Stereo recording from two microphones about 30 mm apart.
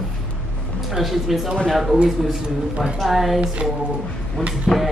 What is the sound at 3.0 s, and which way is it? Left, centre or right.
Speech, centre.